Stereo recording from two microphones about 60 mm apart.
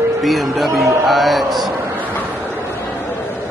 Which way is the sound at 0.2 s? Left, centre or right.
Centre.